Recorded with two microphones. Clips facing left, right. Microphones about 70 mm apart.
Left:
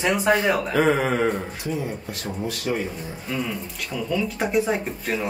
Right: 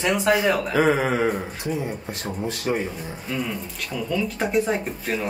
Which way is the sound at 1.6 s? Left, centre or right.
Right.